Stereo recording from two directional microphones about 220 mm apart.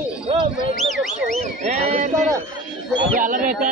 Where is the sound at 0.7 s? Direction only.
Centre (ahead or behind).